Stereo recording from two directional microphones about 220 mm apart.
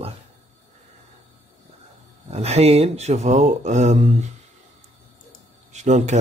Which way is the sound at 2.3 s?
30° right (ahead or behind).